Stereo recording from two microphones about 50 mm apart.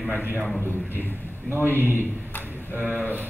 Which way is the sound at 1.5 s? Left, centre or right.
Right.